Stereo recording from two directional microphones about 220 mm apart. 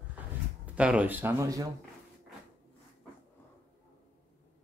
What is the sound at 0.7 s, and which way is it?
Speech, 5° right (ahead or behind).